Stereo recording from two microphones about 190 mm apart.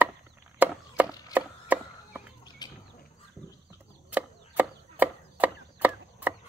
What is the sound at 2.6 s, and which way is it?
Bird, 20° left (ahead or behind).